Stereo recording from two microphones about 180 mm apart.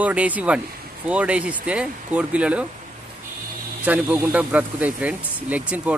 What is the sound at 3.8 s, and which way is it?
A man's voice, 10° right (ahead or behind).